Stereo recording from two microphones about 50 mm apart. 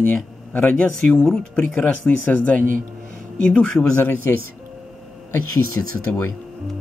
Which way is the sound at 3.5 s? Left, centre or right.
Centre.